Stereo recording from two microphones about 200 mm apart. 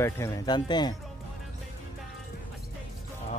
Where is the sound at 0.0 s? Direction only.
15° left (ahead or behind).